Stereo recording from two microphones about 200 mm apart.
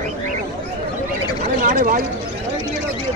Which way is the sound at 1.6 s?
45° right (ahead or behind).